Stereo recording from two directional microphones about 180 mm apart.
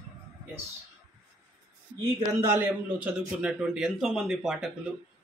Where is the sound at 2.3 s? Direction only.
10° right (ahead or behind).